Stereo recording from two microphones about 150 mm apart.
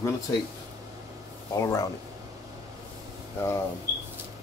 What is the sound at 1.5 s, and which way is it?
Speech, 20° left (ahead or behind).